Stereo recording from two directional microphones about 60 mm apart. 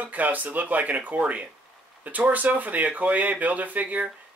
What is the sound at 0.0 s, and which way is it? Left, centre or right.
Speech, right.